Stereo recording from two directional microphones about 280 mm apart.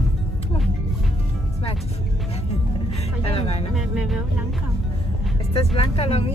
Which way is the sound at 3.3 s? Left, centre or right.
Left.